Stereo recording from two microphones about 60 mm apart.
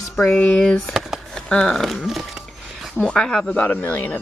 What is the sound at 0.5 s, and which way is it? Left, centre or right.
Speech, centre.